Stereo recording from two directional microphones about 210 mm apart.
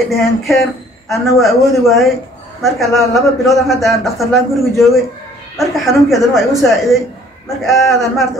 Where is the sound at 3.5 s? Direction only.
Centre (ahead or behind).